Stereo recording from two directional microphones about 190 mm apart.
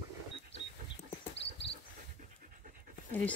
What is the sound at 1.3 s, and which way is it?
Cricket, 65° left (ahead or behind).